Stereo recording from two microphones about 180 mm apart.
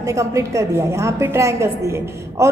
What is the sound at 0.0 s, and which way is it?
A woman's voice, 15° right (ahead or behind).